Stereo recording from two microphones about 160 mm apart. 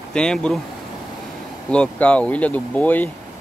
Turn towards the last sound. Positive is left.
turn(degrees=10)  # may be behind; listen again after turning